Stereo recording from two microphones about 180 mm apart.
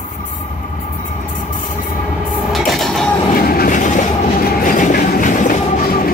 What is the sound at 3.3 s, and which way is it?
Train, 55° left (ahead or behind).